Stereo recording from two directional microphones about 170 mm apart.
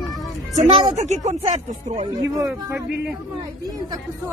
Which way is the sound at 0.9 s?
40° right (ahead or behind).